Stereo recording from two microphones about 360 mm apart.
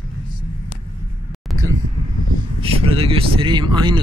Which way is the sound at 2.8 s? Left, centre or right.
Centre.